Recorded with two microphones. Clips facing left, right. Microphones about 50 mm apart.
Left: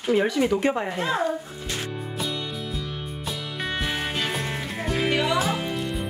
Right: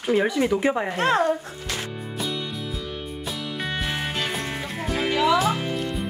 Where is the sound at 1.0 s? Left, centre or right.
Right.